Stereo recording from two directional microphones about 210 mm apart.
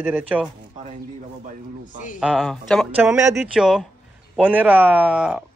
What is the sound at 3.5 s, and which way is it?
Speech, centre (ahead or behind).